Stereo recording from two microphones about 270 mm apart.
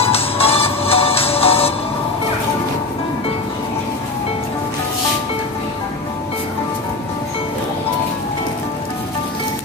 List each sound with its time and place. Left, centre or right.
0.0 s music: left